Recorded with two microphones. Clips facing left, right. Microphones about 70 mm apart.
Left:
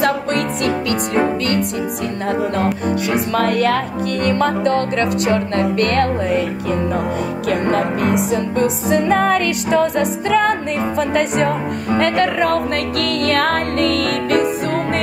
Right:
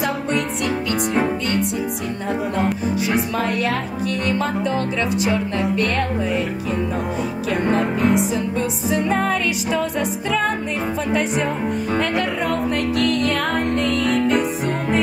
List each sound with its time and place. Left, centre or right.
0.3 s music: centre
2.2 s speech: centre
3.3 s music: left
4.2 s speech: centre
8.9 s music: left
11.1 s speech: centre
13.3 s music: left
13.8 s music: centre